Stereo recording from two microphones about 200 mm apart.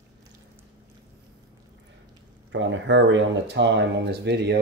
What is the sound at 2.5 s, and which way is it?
Speech, 65° right (ahead or behind).